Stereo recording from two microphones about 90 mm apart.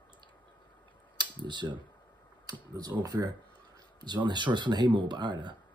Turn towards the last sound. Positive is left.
turn(degrees=-55)  # may be behind; listen again after turning